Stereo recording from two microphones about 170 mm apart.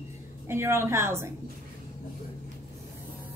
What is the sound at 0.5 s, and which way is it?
Speech, 15° right (ahead or behind).